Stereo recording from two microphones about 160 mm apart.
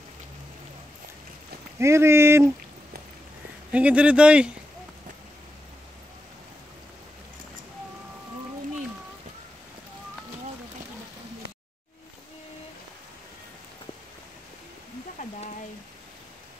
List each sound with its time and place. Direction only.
1.8 s speech: 15° right (ahead or behind)
3.7 s speech: 10° right (ahead or behind)